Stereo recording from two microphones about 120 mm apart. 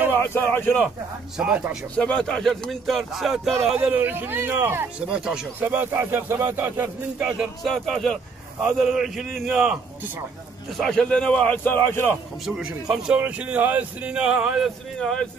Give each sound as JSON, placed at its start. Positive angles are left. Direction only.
{"t": 0.1, "sound": "speech", "side_deg": 20}
{"t": 1.4, "sound": "speech", "side_deg": -5}
{"t": 2.0, "sound": "speech", "side_deg": 5}
{"t": 5.1, "sound": "speech", "side_deg": -5}
{"t": 5.6, "sound": "speech", "side_deg": -15}
{"t": 7.2, "sound": "speech", "side_deg": -5}
{"t": 10.8, "sound": "a man's voice", "side_deg": 5}
{"t": 12.4, "sound": "speech", "side_deg": -5}
{"t": 15.0, "sound": "speech", "side_deg": 5}